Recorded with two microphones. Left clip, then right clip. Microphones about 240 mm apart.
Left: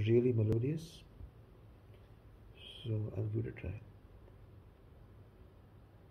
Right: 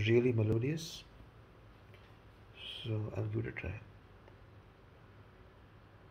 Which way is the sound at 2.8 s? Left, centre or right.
Right.